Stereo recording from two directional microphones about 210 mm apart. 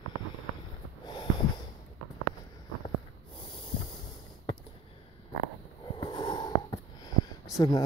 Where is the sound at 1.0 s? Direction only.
20° left (ahead or behind).